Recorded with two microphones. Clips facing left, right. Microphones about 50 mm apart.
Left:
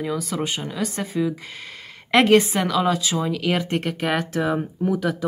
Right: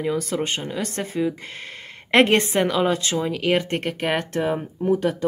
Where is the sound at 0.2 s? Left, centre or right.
Centre.